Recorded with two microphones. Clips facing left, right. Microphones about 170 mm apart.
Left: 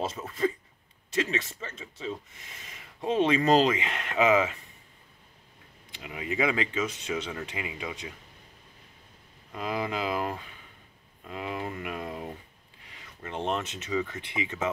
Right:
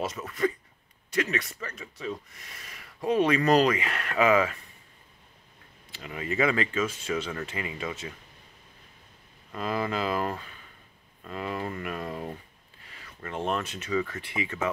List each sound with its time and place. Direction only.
0.0 s speech: 25° left (ahead or behind)
5.9 s speech: 10° left (ahead or behind)
9.5 s speech: 10° left (ahead or behind)
12.8 s a sound: 15° left (ahead or behind)
13.5 s speech: 20° left (ahead or behind)